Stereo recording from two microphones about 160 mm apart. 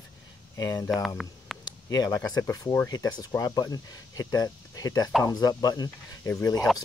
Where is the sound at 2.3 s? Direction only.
20° left (ahead or behind).